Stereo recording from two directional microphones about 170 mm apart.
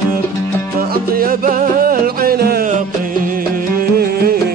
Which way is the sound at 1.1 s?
55° right (ahead or behind).